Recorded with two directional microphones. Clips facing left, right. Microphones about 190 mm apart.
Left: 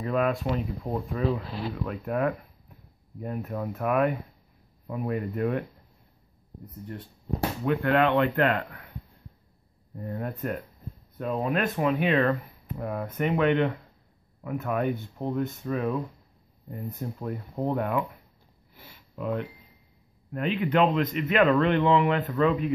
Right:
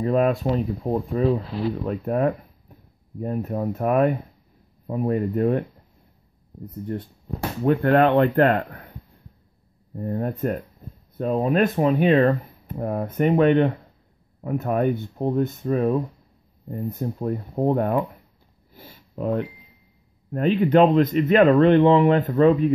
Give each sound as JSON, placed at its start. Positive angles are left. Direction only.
{"t": 0.0, "sound": "speech", "side_deg": -35}
{"t": 7.6, "sound": "speech", "side_deg": -40}
{"t": 9.9, "sound": "speech", "side_deg": -35}
{"t": 18.8, "sound": "a sound", "side_deg": -35}
{"t": 20.2, "sound": "speech", "side_deg": -35}